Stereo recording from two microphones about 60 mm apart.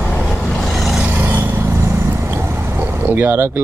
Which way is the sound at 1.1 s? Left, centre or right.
Right.